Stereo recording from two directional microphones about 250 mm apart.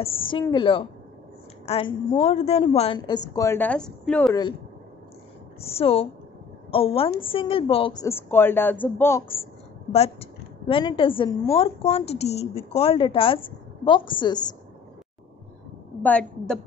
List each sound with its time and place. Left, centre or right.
0.0 s a woman's voice: centre
3.3 s speech: centre
5.6 s a woman's voice: left
10.7 s a woman's voice: centre
16.0 s speech: centre